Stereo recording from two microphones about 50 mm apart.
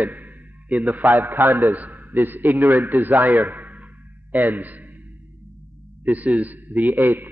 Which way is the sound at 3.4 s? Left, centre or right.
Right.